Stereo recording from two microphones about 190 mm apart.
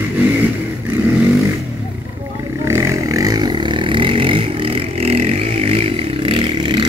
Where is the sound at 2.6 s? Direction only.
15° right (ahead or behind).